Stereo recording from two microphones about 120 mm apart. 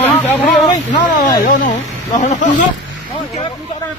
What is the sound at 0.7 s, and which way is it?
Speech, 35° left (ahead or behind).